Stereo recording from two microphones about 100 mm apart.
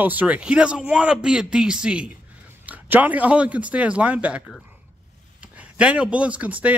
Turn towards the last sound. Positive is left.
turn(degrees=-15)  # may be behind; listen again after turning